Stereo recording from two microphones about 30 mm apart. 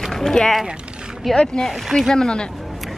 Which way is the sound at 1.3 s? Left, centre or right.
Left.